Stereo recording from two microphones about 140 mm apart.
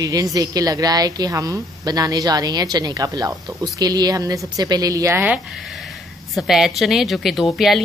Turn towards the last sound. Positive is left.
turn(degrees=0)  # may be behind; listen again after turning